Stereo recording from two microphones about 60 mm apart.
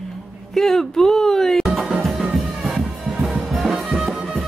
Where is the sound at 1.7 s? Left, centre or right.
Centre.